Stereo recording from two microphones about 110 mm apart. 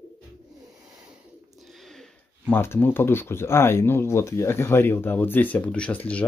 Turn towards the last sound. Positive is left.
turn(degrees=10)  # may be behind; listen again after turning